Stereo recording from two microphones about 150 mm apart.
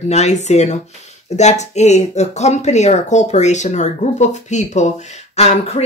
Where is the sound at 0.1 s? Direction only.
50° left (ahead or behind).